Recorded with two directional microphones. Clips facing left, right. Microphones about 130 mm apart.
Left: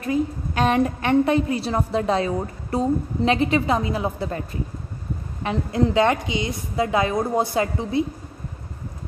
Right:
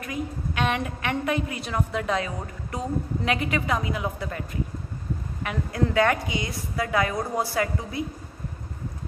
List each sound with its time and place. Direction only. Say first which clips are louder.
0.0 s a woman's voice: left 8 dB; 35° left (ahead or behind)